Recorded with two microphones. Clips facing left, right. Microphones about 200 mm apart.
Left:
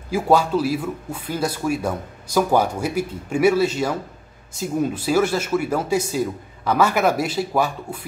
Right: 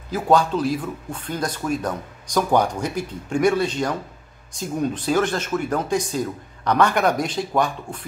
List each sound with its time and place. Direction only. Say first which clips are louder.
0.1 s speech: left 1 dB; 10° left (ahead or behind)